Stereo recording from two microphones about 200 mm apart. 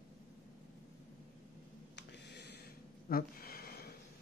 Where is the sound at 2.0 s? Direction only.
55° left (ahead or behind).